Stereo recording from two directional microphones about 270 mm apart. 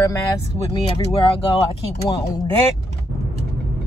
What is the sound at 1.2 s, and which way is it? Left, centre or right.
Speech, left.